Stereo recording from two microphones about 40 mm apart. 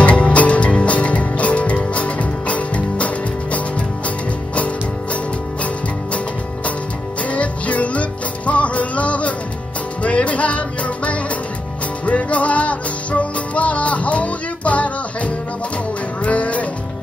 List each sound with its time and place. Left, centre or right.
0.0 s music: left
7.2 s music: left